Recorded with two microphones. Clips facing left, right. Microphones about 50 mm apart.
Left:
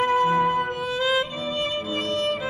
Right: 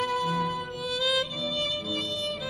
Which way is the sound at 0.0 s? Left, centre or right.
Left.